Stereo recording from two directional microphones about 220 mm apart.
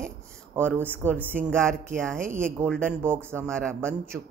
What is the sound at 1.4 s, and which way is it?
Speech, 5° left (ahead or behind).